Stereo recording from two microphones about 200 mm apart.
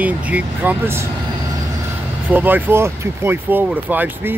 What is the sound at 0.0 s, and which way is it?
Speech, 5° right (ahead or behind).